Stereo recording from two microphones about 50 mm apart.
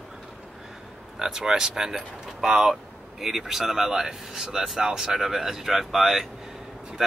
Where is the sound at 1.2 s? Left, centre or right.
Centre.